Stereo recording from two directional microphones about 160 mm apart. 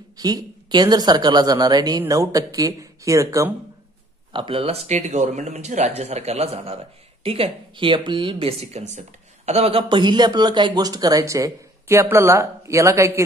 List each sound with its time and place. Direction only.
0.2 s speech: 25° right (ahead or behind)
4.3 s speech: 30° right (ahead or behind)